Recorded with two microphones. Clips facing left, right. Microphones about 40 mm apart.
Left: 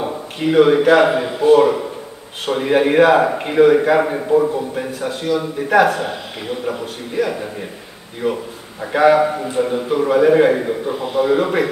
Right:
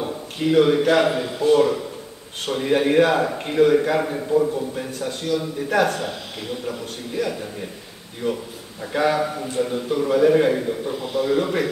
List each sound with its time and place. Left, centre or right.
0.4 s a man's voice: centre
4.7 s a man's voice: centre